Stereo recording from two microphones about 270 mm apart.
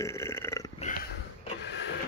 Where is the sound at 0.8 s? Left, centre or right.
Left.